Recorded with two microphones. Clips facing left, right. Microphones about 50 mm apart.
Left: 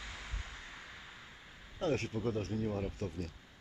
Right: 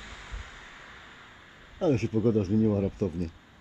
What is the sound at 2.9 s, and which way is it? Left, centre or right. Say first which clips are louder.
Speech: right 11 dB; right.